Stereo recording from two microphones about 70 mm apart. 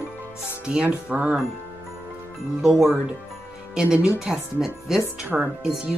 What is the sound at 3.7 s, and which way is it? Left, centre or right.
Speech, centre.